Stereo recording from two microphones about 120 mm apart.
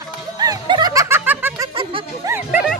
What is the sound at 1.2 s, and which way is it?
Snicker, 15° right (ahead or behind).